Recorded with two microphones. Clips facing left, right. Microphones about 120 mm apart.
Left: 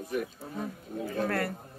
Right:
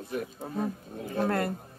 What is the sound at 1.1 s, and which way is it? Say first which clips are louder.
Speech: right 3 dB; 30° right (ahead or behind).